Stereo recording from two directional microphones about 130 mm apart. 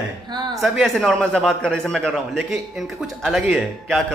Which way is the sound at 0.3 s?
35° right (ahead or behind).